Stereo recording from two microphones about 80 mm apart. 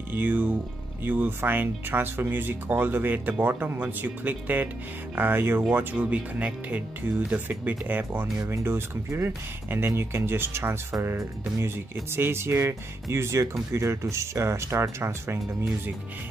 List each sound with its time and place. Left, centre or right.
0.1 s speech: right